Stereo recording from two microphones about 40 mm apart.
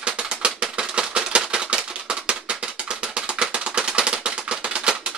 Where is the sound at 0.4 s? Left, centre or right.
Right.